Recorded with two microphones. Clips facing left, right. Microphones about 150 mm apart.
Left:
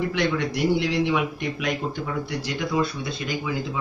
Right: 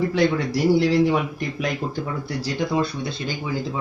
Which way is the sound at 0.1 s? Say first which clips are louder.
Right 4 dB; 35° right (ahead or behind).